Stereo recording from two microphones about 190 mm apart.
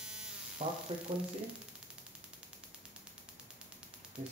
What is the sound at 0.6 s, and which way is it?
Speech, 35° right (ahead or behind).